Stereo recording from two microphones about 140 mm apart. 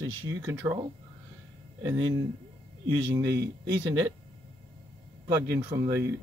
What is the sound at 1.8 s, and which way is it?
Speech, 20° right (ahead or behind).